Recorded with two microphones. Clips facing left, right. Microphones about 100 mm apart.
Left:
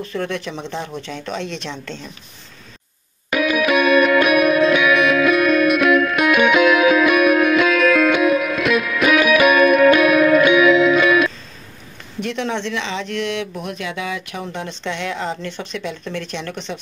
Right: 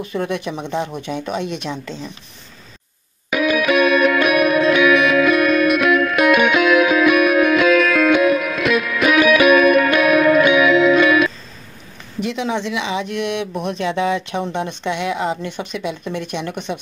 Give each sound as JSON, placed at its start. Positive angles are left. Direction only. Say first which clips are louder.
{"t": 0.0, "sound": "speech", "louder": "right 2 dB", "side_deg": -15}
{"t": 3.3, "sound": "music", "louder": "right 1 dB", "side_deg": 0}
{"t": 12.2, "sound": "speech", "louder": "right 1 dB", "side_deg": -5}